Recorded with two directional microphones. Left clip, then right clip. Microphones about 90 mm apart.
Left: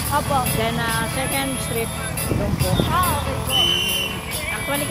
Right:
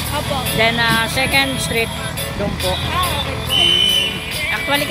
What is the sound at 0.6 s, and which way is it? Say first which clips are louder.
Speech: right 8 dB; 25° right (ahead or behind).